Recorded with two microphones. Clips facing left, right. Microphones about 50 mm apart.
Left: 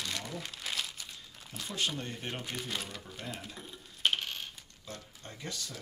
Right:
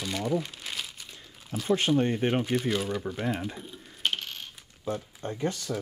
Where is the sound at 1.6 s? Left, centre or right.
Right.